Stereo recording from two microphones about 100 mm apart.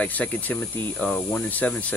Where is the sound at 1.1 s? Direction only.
15° left (ahead or behind).